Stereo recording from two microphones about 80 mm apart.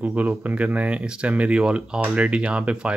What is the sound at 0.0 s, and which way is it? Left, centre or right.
Speech, centre.